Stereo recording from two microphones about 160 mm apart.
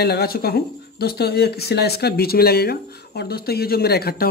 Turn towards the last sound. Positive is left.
turn(degrees=80)